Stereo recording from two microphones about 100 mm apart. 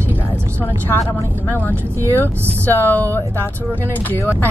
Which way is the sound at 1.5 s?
20° left (ahead or behind).